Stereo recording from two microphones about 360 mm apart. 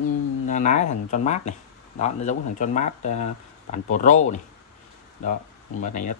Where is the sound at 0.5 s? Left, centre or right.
Centre.